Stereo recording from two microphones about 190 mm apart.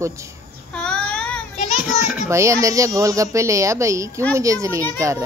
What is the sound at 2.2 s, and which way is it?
Speech, 15° right (ahead or behind).